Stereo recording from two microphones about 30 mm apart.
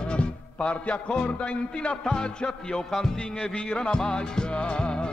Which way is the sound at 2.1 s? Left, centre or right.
Left.